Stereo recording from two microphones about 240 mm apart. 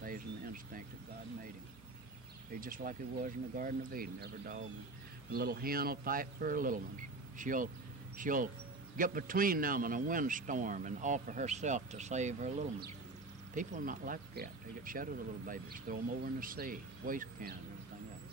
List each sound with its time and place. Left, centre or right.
0.0 s a sound: right
2.6 s speech: right
13.6 s speech: right